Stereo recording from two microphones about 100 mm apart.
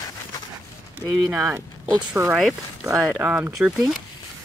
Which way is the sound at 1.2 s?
5° right (ahead or behind).